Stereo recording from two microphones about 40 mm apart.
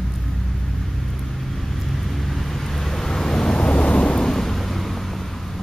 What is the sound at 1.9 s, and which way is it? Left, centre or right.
Vehicle, centre.